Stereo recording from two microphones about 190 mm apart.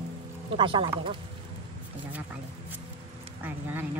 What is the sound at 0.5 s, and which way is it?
Speech, 25° right (ahead or behind).